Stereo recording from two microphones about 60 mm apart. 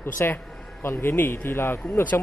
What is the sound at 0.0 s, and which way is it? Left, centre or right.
A man's voice, left.